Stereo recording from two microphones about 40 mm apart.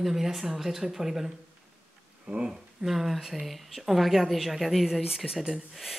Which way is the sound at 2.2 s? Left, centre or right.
Right.